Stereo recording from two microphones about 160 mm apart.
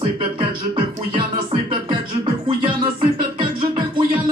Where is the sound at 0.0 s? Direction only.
30° right (ahead or behind).